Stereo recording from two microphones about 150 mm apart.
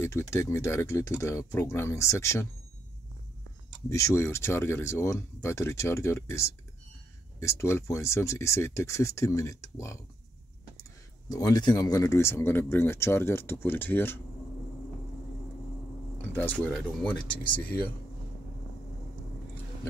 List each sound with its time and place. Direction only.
0.0 s speech: 15° left (ahead or behind)
3.9 s speech: 20° left (ahead or behind)
16.2 s speech: 10° left (ahead or behind)